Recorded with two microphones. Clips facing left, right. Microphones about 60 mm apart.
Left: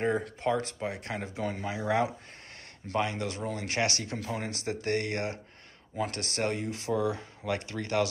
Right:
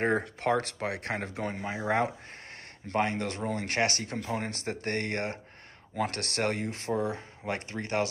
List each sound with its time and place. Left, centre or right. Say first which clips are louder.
0.0 s speech: right 1 dB; right
1.5 s speech: even; right
5.9 s speech: right 1 dB; right